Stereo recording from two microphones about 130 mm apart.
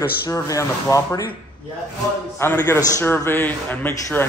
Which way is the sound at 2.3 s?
15° left (ahead or behind).